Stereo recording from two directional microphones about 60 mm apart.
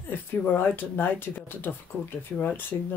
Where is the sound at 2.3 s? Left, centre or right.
Left.